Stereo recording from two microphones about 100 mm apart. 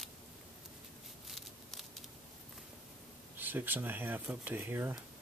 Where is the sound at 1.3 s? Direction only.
Centre (ahead or behind).